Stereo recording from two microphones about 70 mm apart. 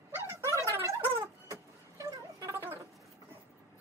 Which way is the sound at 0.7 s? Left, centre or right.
Right.